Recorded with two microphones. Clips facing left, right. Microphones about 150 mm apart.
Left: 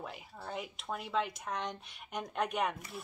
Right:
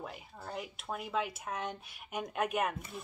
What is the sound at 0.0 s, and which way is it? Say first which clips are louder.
Speech: even; centre (ahead or behind).